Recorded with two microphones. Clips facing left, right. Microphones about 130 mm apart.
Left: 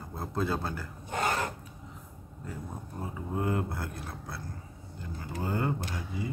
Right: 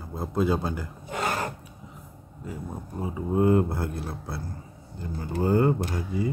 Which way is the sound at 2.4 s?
10° right (ahead or behind).